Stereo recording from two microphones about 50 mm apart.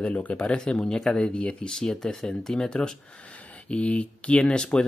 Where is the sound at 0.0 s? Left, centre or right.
Left.